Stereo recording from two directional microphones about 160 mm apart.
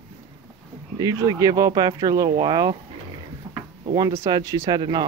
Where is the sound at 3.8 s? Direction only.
25° right (ahead or behind).